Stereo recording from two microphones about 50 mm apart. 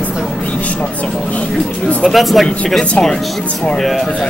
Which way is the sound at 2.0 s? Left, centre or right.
Centre.